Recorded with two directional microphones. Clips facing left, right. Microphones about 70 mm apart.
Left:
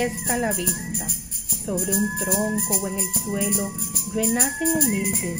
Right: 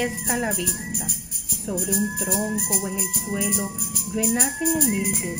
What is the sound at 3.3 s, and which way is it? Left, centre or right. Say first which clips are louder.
Music: left 1 dB; centre.